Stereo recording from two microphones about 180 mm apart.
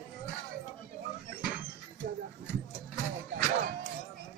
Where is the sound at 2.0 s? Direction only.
60° right (ahead or behind).